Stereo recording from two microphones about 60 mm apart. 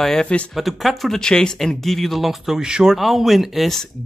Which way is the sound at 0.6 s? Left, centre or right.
Centre.